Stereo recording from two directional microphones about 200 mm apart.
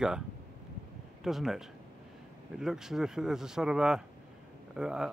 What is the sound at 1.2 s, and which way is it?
Speech, centre (ahead or behind).